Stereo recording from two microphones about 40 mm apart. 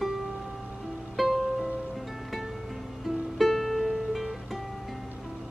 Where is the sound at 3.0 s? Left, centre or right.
Centre.